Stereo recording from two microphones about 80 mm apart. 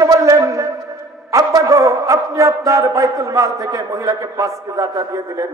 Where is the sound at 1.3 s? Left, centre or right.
Right.